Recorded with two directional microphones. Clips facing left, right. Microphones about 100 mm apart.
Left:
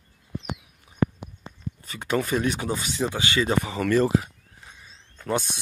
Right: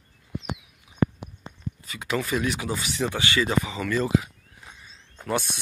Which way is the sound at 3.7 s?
50° left (ahead or behind).